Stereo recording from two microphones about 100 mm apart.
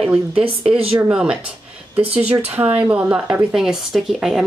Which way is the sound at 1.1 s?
10° right (ahead or behind).